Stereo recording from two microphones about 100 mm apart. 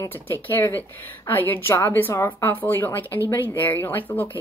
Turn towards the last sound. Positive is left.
turn(degrees=20)  # may be behind; listen again after turning